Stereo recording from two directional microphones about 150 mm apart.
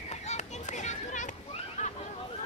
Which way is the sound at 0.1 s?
50° left (ahead or behind).